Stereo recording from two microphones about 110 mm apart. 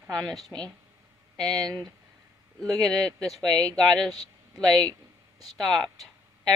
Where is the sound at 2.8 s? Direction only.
5° left (ahead or behind).